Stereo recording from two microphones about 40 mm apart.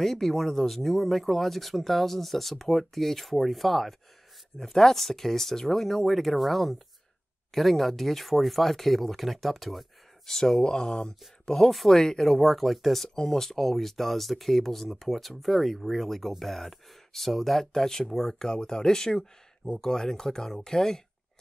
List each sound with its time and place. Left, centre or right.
0.0 s speech: centre